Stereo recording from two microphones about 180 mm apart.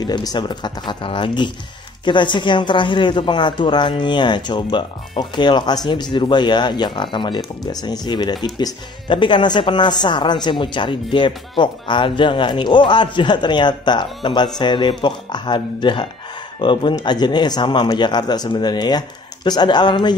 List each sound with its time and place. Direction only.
0.0 s speech: 20° left (ahead or behind)